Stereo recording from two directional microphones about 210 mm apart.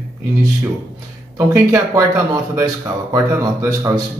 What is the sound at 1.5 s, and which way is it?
Speech, 15° right (ahead or behind).